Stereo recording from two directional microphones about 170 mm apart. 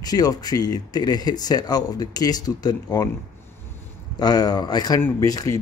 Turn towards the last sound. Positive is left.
turn(degrees=20)  # may be behind; listen again after turning